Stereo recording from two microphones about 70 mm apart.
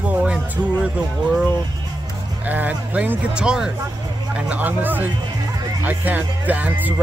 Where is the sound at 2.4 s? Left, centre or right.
Right.